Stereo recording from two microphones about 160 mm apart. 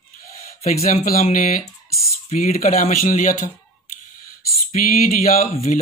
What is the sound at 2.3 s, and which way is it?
Speech, 50° left (ahead or behind).